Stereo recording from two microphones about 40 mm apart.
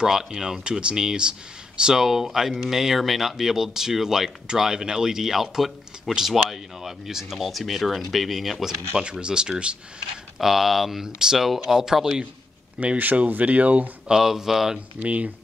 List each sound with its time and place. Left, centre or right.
0.0 s speech: centre
8.9 s speech: right
10.4 s speech: centre
12.8 s speech: right
14.0 s speech: centre
15.0 s speech: right